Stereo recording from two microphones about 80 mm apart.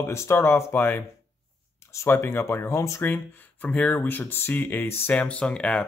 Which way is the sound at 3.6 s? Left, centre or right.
Centre.